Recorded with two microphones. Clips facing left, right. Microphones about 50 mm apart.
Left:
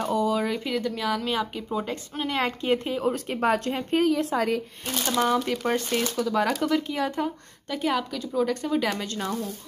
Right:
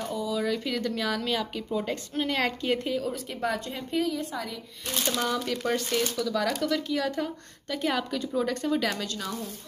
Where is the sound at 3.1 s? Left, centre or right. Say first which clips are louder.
Left 6 dB; left.